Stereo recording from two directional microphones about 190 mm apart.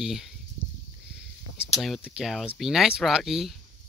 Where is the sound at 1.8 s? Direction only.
Centre (ahead or behind).